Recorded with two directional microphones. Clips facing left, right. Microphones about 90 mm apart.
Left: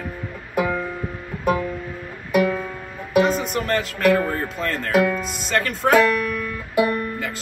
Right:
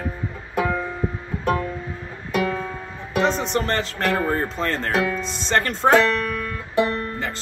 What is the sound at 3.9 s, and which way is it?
Speech, 30° right (ahead or behind).